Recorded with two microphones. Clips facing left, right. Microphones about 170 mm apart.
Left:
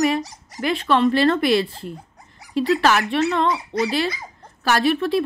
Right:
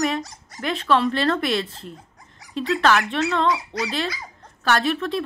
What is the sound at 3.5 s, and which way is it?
Speech, 25° left (ahead or behind).